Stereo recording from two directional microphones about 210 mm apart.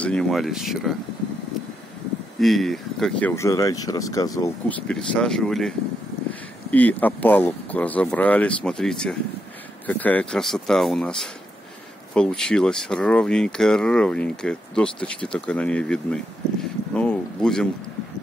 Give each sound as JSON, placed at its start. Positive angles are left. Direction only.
{"t": 0.0, "sound": "speech", "side_deg": 5}
{"t": 2.4, "sound": "speech", "side_deg": 0}
{"t": 4.8, "sound": "speech", "side_deg": 5}